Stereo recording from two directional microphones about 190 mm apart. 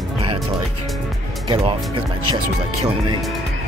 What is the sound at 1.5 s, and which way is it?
Speech, 25° right (ahead or behind).